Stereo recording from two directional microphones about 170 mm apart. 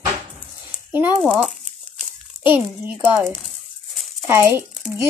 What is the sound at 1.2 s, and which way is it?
Speech, centre (ahead or behind).